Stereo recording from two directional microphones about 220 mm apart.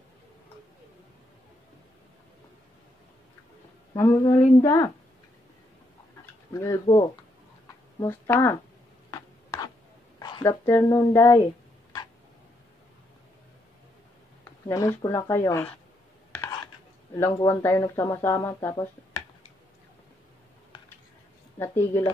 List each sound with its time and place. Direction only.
3.9 s speech: 15° left (ahead or behind)
6.5 s speech: 15° left (ahead or behind)
9.1 s a sound: 15° left (ahead or behind)
10.1 s speech: 15° left (ahead or behind)
14.7 s speech: 15° left (ahead or behind)
16.3 s a sound: 15° left (ahead or behind)
17.2 s speech: 15° left (ahead or behind)
21.5 s speech: 10° left (ahead or behind)